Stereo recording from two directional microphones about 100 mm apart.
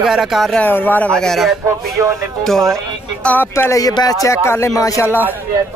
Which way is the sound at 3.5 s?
30° left (ahead or behind).